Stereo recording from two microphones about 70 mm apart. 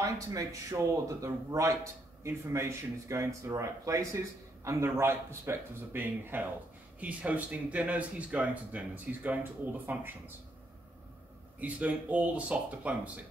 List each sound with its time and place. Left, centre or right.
0.0 s speech: right
11.6 s speech: right